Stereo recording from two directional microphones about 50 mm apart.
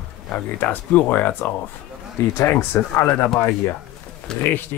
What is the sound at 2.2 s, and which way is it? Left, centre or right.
Speech, left.